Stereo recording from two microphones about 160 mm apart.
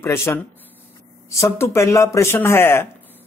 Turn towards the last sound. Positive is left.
turn(degrees=10)  # may be behind; listen again after turning